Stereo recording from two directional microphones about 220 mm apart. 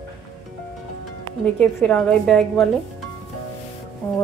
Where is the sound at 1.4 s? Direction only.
5° left (ahead or behind).